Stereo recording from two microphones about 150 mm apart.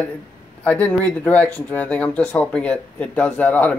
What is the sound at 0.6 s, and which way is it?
Speech, 10° left (ahead or behind).